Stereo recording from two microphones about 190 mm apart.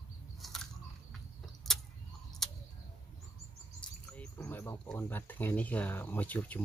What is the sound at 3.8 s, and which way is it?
Speech, 10° left (ahead or behind).